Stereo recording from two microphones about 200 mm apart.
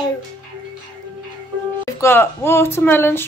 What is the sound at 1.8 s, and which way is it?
A woman's voice, 10° left (ahead or behind).